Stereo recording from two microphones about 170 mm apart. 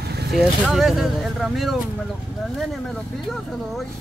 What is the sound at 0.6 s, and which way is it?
Speech, centre (ahead or behind).